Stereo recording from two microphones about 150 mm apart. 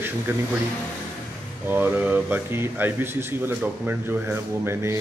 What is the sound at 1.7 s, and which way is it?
A man's voice, 15° right (ahead or behind).